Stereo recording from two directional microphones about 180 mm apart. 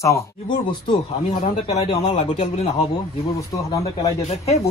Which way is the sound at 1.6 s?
40° left (ahead or behind).